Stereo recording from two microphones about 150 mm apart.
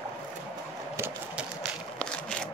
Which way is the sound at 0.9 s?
15° right (ahead or behind).